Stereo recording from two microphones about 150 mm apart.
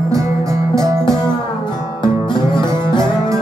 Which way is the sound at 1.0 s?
30° left (ahead or behind).